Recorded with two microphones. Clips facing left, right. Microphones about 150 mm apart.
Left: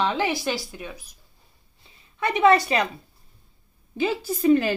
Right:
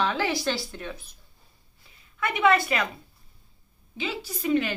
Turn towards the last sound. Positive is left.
turn(degrees=45)  # may be behind; listen again after turning